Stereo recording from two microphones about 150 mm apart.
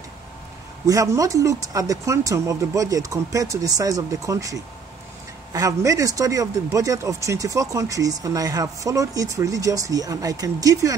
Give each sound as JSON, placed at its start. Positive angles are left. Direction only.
{"t": 0.8, "sound": "speech", "side_deg": -20}